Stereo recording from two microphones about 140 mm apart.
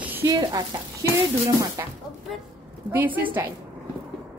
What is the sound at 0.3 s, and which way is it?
Speech, 30° right (ahead or behind).